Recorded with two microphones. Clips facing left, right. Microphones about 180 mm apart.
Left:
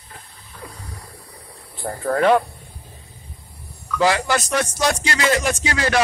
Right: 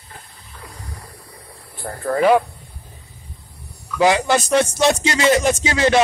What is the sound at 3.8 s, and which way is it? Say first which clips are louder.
Speech: right 3 dB; 15° right (ahead or behind).